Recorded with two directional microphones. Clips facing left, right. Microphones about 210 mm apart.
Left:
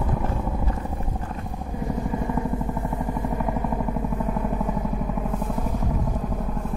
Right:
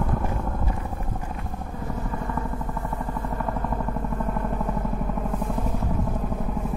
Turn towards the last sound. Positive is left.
turn(degrees=0)  # may be behind; listen again after turning